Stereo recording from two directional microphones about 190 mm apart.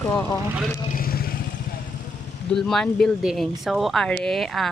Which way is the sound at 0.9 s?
50° left (ahead or behind).